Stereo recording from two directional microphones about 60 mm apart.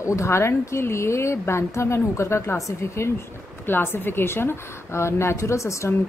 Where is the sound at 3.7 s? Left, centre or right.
Left.